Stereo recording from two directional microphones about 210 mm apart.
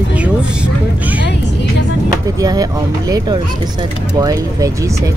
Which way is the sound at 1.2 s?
55° left (ahead or behind).